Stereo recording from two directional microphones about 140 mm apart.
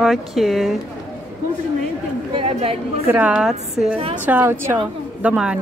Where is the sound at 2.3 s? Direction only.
40° right (ahead or behind).